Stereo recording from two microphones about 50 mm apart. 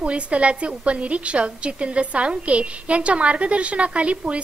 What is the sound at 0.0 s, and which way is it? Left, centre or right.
A woman's voice, right.